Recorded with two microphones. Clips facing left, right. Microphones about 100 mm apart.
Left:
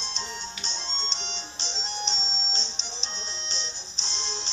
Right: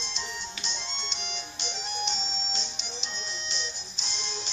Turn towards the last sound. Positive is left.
turn(degrees=30)  # may be behind; listen again after turning